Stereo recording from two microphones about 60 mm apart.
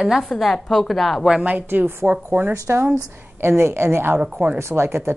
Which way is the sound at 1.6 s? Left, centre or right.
Right.